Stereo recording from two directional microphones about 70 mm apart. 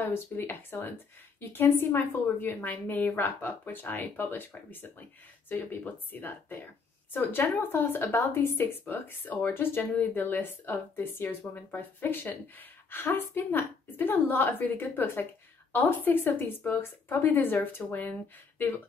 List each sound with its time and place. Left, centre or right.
0.0 s a woman's voice: left